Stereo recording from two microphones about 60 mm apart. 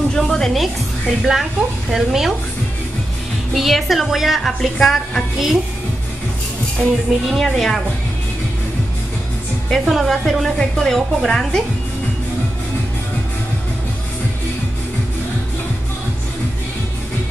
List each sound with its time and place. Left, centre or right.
0.2 s speech: centre
3.5 s speech: centre
6.8 s speech: left
7.2 s speech: centre
9.7 s speech: centre